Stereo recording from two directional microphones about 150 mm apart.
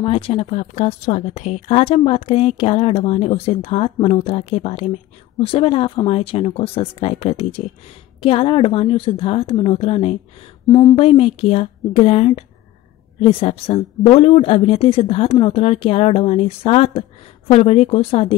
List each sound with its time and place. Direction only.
0.0 s a woman's voice: 40° left (ahead or behind)
10.7 s speech: 25° left (ahead or behind)
11.0 s speech: 40° left (ahead or behind)